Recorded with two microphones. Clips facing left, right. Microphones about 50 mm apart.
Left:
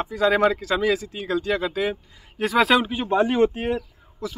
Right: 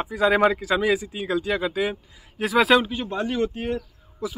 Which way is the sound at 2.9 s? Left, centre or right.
Centre.